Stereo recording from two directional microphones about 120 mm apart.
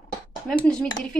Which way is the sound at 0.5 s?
10° left (ahead or behind).